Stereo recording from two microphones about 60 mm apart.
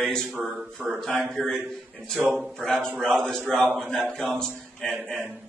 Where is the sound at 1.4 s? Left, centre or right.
Centre.